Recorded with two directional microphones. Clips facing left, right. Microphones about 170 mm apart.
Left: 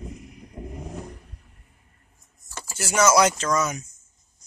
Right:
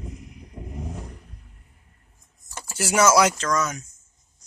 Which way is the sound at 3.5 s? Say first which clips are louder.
Left 1 dB; 10° left (ahead or behind).